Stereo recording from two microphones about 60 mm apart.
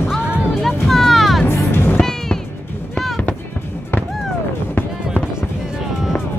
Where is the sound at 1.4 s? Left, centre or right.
Left.